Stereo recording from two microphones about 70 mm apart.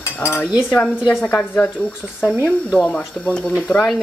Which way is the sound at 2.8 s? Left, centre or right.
Centre.